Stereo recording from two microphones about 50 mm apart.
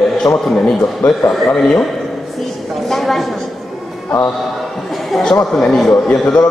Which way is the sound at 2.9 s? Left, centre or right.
Centre.